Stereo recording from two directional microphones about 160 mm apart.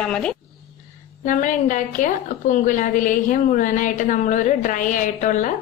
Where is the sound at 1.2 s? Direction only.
55° left (ahead or behind).